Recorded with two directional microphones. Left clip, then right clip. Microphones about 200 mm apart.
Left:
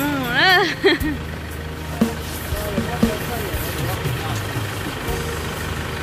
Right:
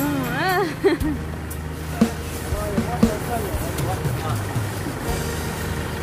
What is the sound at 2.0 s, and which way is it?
Music, centre (ahead or behind).